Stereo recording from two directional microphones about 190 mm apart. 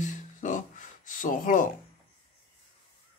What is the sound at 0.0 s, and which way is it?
Music, 40° left (ahead or behind).